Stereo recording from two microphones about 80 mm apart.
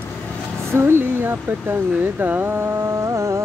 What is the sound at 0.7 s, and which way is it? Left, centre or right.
Speech, right.